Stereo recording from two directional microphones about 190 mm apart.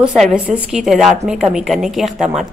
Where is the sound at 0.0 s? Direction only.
5° right (ahead or behind).